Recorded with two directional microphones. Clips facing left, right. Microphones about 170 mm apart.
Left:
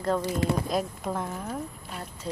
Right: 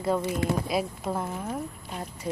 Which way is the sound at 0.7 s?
5° right (ahead or behind).